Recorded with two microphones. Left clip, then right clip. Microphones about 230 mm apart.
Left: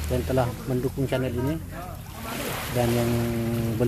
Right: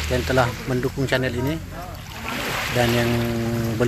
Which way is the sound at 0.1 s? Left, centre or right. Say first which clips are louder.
Right 5 dB; centre.